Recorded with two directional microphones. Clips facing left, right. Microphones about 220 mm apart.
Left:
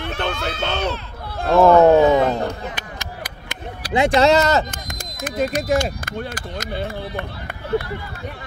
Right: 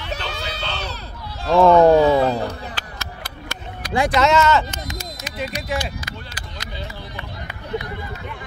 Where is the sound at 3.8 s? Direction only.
35° left (ahead or behind).